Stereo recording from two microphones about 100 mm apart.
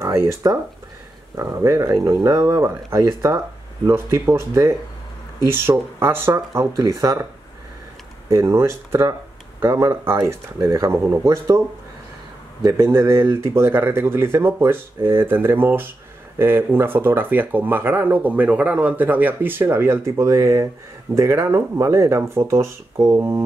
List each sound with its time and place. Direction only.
0.0 s speech: 30° right (ahead or behind)
8.3 s speech: 30° right (ahead or behind)
12.7 s speech: 30° right (ahead or behind)